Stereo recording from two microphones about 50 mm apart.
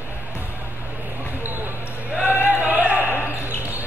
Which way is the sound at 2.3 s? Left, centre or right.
Right.